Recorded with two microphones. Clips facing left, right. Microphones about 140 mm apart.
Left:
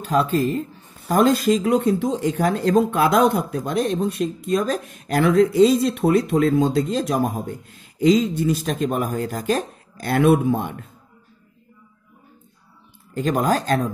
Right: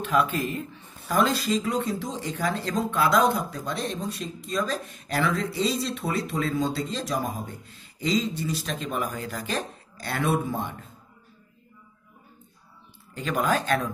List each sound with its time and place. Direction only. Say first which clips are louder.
0.0 s speech: left 5 dB; 35° left (ahead or behind); by 10.9 s 55° left (ahead or behind)
13.1 s speech: left 5 dB; 40° left (ahead or behind)